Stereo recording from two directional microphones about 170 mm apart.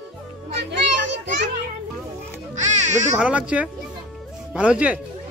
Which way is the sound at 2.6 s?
45° right (ahead or behind).